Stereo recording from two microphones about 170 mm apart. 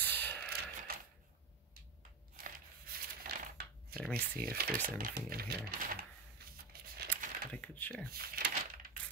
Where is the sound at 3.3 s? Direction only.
65° right (ahead or behind).